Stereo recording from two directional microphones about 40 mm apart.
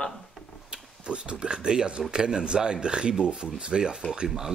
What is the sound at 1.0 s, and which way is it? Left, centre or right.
Speech, right.